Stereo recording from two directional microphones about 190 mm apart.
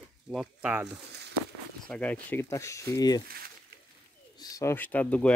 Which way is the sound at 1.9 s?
5° left (ahead or behind).